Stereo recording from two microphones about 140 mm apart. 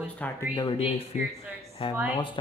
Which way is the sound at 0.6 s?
40° left (ahead or behind).